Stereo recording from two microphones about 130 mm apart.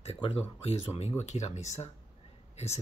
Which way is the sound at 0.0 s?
50° left (ahead or behind).